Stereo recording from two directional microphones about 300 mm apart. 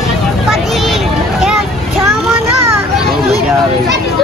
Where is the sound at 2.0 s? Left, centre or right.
Centre.